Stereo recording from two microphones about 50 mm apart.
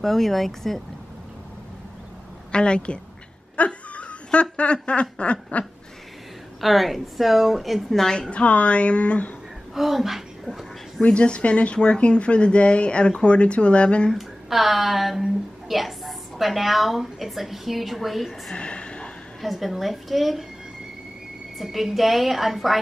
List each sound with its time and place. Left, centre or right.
0.0 s a woman's voice: centre
2.5 s speech: centre
3.5 s a sound: left
5.1 s speech: left
6.6 s a woman's voice: centre
8.0 s speech: centre
9.8 s speech: centre
11.0 s speech: centre
14.1 s a woman's voice: centre
18.5 s a sound: left
19.4 s a woman's voice: centre
21.5 s a woman's voice: centre